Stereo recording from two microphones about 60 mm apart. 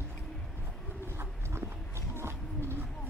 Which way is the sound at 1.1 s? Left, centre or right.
Right.